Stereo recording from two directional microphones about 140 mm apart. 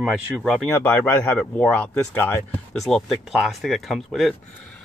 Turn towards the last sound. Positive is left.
turn(degrees=0)  # may be behind; listen again after turning